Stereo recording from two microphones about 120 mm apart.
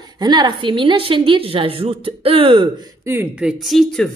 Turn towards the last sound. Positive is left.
turn(degrees=0)  # may be behind; listen again after turning